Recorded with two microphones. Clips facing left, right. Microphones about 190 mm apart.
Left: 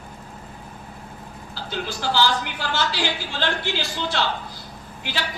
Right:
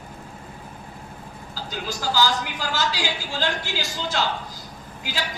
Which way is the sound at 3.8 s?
45° right (ahead or behind).